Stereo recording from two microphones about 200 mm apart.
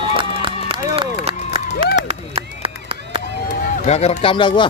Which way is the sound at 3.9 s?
30° left (ahead or behind).